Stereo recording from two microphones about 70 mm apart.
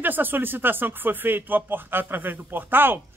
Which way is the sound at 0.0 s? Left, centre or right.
Right.